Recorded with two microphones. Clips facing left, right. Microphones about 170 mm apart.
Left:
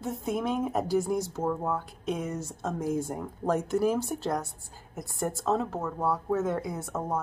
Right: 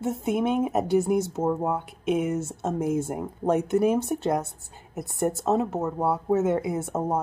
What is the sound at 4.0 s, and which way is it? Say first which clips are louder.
A woman's voice: right 5 dB; centre (ahead or behind).